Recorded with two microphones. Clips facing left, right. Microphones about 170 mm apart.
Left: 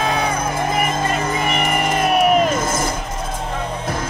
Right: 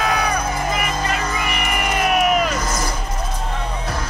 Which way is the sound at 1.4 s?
45° left (ahead or behind).